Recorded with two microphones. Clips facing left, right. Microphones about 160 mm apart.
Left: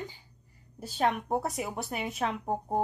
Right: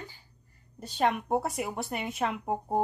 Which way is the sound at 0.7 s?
5° left (ahead or behind).